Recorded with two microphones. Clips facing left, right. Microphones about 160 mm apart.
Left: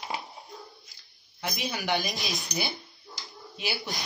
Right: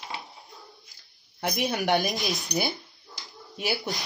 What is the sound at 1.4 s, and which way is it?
Speech, 55° right (ahead or behind).